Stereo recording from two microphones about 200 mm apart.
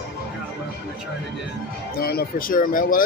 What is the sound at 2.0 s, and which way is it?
Speech, 50° left (ahead or behind).